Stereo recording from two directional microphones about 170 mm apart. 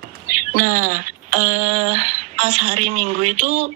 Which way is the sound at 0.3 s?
55° right (ahead or behind).